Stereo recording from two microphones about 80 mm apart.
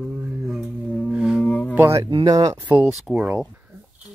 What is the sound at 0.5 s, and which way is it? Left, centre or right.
Singing bowl, centre.